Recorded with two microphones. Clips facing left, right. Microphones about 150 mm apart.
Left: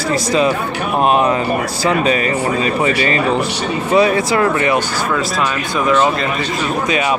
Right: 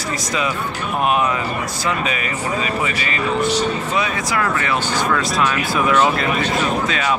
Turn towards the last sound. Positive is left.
turn(degrees=15)  # may be behind; listen again after turning